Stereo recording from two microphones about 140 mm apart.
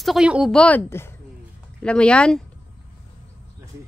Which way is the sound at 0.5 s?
10° left (ahead or behind).